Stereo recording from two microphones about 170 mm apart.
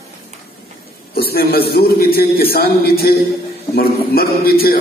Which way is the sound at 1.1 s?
65° left (ahead or behind).